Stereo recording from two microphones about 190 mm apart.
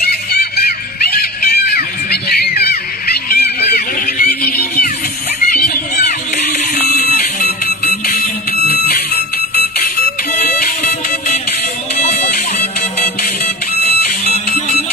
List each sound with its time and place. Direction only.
0.0 s music: 55° left (ahead or behind)
6.0 s music: 50° left (ahead or behind)
12.0 s music: 35° left (ahead or behind)
13.9 s music: 55° left (ahead or behind)